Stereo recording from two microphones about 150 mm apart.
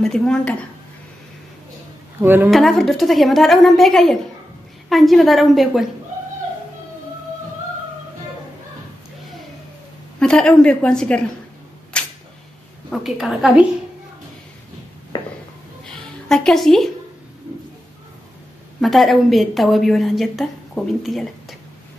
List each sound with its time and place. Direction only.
0.0 s a woman's voice: 5° left (ahead or behind)
2.1 s speech: 15° right (ahead or behind)
2.5 s a woman's voice: centre (ahead or behind)
10.1 s a woman's voice: 5° left (ahead or behind)
11.9 s camera: 5° left (ahead or behind)
12.9 s a woman's voice: centre (ahead or behind)
15.1 s a sound: 30° left (ahead or behind)
15.8 s music: 5° left (ahead or behind)
18.8 s a woman's voice: centre (ahead or behind)